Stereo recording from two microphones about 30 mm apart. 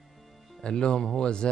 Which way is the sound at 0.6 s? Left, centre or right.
Left.